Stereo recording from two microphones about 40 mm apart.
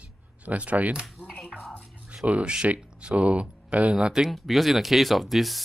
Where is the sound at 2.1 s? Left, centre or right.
Right.